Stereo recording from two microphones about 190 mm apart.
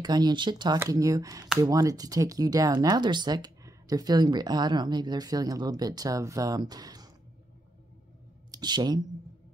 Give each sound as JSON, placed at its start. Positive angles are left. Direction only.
{"t": 0.0, "sound": "speech", "side_deg": -20}
{"t": 8.5, "sound": "speech", "side_deg": -20}